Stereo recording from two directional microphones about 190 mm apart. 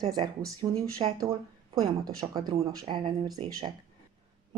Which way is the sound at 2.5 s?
30° right (ahead or behind).